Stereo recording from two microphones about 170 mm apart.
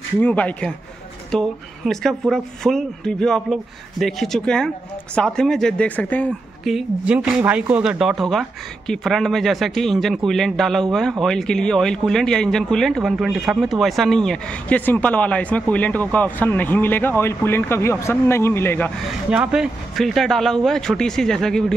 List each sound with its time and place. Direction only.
0.2 s speech: 10° left (ahead or behind)
6.7 s speech: 5° right (ahead or behind); by 18.9 s 15° left (ahead or behind)
19.3 s speech: 5° right (ahead or behind)